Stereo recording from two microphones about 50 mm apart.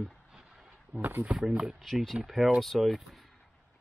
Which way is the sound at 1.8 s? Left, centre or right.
Centre.